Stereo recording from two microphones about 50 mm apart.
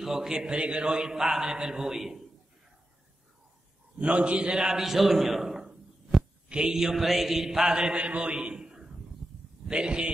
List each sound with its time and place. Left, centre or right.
0.0 s mantra: centre
0.8 s mantra: centre
4.0 s a man's voice: right
4.8 s a man's voice: centre
6.5 s mantra: centre
9.7 s a man's voice: centre